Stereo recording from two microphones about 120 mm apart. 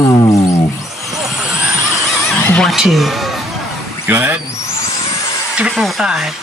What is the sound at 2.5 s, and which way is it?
Speech, 5° left (ahead or behind).